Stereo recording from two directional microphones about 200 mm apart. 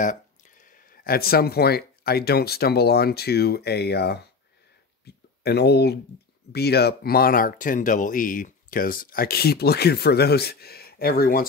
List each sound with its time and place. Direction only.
0.0 s speech: 40° left (ahead or behind)
5.1 s a sound: 55° left (ahead or behind)
5.4 s speech: 55° left (ahead or behind)